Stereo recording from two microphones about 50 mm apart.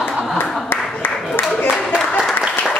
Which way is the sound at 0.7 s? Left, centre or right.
Left.